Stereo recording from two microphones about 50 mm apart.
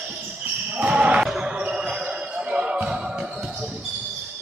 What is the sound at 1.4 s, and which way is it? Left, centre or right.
Music, centre.